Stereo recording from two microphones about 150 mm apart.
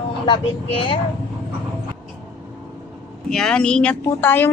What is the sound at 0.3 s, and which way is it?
Speech, 35° left (ahead or behind).